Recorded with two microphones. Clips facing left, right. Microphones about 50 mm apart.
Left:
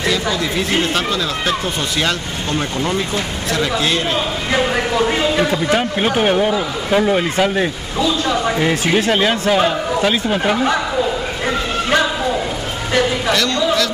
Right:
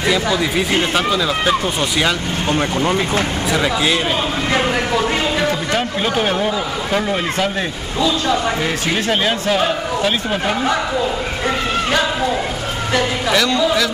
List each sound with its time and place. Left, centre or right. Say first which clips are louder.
0.0 s speech: right 2 dB; centre
2.5 s speech: right 2 dB; right; by 4.0 s centre
5.5 s speech: left 2 dB; centre
5.9 s speech: left 2 dB; left
6.3 s speech: left 2 dB; centre
13.3 s speech: right 1 dB; centre